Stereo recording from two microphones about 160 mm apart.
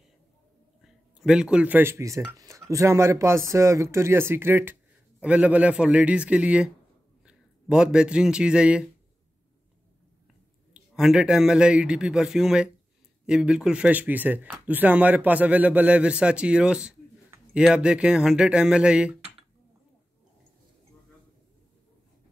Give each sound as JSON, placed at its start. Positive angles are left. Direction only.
{"t": 0.8, "sound": "a man's voice", "side_deg": -5}
{"t": 10.7, "sound": "speech", "side_deg": -5}